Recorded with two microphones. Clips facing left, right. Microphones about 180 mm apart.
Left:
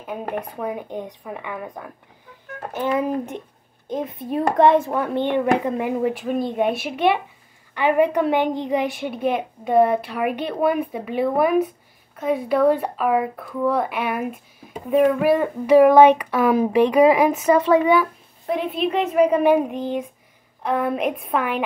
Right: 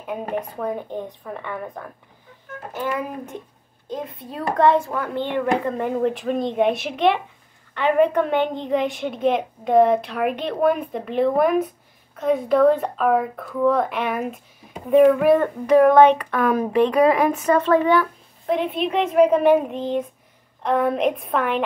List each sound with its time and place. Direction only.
0.6 s a woman's voice: 10° left (ahead or behind)
2.7 s a child's voice: 25° left (ahead or behind)
4.6 s a child's voice: 20° left (ahead or behind)